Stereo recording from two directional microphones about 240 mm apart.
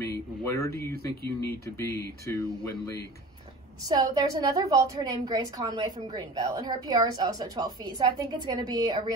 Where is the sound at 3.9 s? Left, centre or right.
Centre.